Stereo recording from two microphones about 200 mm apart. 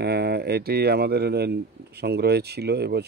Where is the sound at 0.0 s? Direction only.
55° right (ahead or behind).